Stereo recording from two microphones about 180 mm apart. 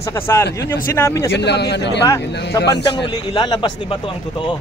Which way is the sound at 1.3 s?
70° left (ahead or behind).